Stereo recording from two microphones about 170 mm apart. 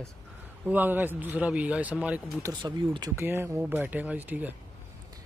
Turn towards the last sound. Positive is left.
turn(degrees=-10)  # may be behind; listen again after turning